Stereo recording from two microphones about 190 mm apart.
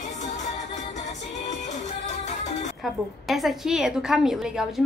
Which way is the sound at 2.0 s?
40° left (ahead or behind).